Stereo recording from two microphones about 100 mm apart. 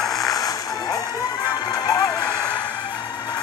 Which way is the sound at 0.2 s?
35° left (ahead or behind).